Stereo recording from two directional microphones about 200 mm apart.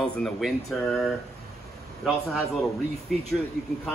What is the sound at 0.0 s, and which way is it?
Speech, centre (ahead or behind).